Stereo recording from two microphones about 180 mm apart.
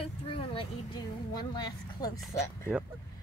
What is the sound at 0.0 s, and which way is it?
Speech, 30° left (ahead or behind).